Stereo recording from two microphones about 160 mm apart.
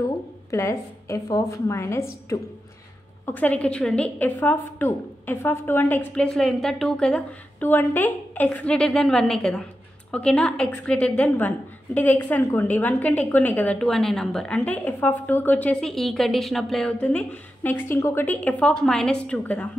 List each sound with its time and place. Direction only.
0.5 s a woman's voice: 15° left (ahead or behind)